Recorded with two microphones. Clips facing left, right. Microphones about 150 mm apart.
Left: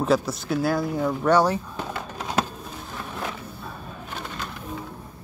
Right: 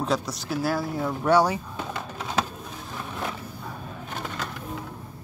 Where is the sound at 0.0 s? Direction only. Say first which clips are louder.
Left 5 dB; 5° left (ahead or behind).